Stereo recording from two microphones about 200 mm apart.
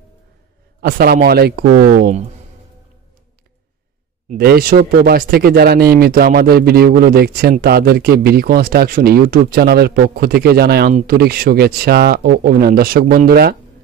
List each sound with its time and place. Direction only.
0.7 s speech: 50° right (ahead or behind)
4.3 s speech: 50° right (ahead or behind)